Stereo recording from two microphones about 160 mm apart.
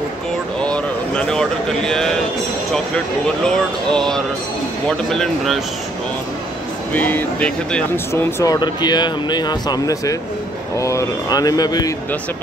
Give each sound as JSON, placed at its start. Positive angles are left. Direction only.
{"t": 0.6, "sound": "a sound", "side_deg": 5}
{"t": 3.4, "sound": "speech", "side_deg": 5}
{"t": 6.9, "sound": "speech", "side_deg": 10}